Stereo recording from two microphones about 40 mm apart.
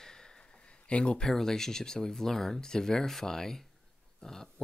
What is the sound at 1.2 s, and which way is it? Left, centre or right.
Speech, centre.